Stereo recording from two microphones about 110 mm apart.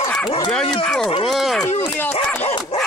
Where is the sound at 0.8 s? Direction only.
5° left (ahead or behind).